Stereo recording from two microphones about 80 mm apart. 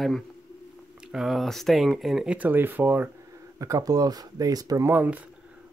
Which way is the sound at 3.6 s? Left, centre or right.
Right.